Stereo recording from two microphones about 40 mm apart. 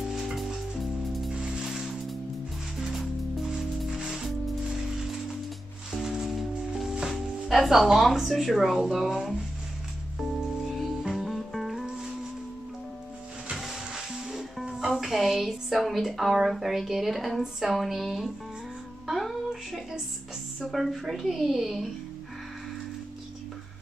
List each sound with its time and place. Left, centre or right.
0.0 s music: centre
1.3 s music: right
3.4 s music: centre
6.0 s music: centre
7.4 s a woman's voice: centre
10.1 s music: centre
13.9 s music: centre
15.0 s a woman's voice: centre
19.0 s a sound: centre
20.7 s a woman's voice: centre